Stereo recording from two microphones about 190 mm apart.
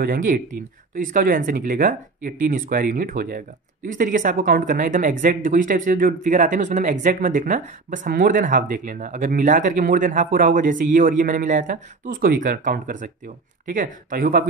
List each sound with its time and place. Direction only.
0.0 s speech: 45° right (ahead or behind)